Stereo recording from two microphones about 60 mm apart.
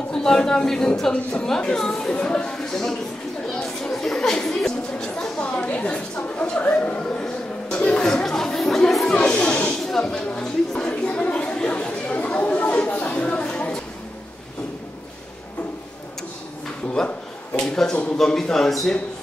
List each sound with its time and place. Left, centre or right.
0.1 s speech: centre
3.4 s chatter: centre
4.5 s a sound: centre
6.8 s chatter: centre
9.1 s a sound: centre
17.6 s a man's voice: centre